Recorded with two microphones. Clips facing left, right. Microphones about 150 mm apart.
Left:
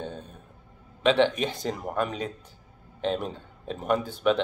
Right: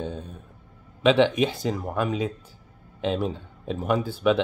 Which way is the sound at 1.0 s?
10° right (ahead or behind).